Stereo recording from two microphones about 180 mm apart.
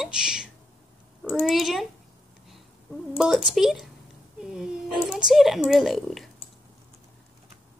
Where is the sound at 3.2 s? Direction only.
Centre (ahead or behind).